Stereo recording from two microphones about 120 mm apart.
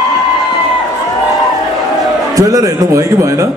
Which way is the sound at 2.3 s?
30° right (ahead or behind).